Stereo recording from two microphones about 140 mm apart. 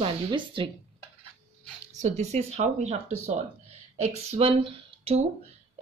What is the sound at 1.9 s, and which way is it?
A woman's voice, 55° right (ahead or behind).